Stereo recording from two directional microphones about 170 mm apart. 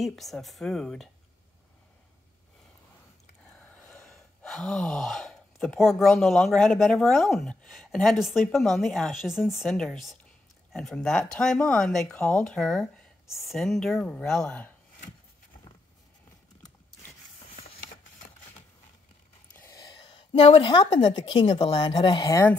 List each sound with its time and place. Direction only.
0.0 s speech: centre (ahead or behind)
3.9 s speech: 5° left (ahead or behind)
17.6 s a sound: 40° left (ahead or behind)
19.5 s a woman's voice: 20° left (ahead or behind)